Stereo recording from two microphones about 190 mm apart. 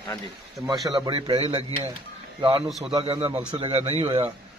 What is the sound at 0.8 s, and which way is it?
Speech, 20° right (ahead or behind).